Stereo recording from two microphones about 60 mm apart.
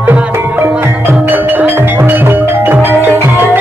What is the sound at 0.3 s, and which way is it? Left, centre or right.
Music, right.